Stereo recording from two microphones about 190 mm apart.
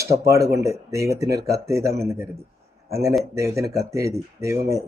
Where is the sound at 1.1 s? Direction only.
15° right (ahead or behind).